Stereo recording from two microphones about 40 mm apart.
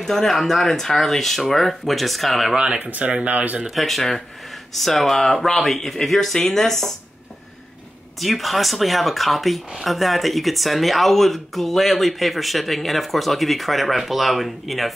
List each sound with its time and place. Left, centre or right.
0.0 s speech: centre
2.5 s speech: right
2.8 s speech: right
3.7 s speech: centre
8.2 s speech: centre